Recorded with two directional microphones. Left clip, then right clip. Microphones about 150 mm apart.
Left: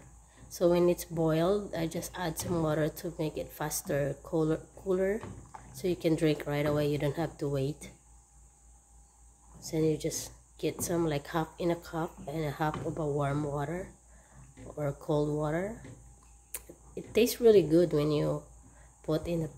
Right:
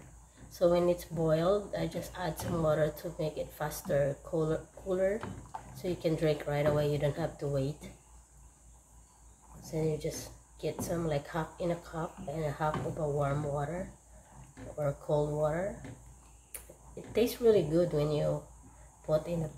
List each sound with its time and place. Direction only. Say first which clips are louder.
0.5 s speech: left 1 dB; 45° left (ahead or behind)
9.6 s a woman's voice: left 4 dB; 60° left (ahead or behind)